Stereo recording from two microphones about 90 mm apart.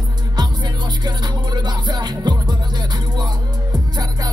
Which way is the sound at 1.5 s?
55° right (ahead or behind).